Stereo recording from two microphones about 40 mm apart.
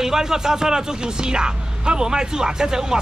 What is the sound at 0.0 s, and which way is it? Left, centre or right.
Speech, centre.